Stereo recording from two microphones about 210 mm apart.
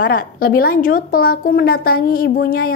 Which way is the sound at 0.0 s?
45° left (ahead or behind).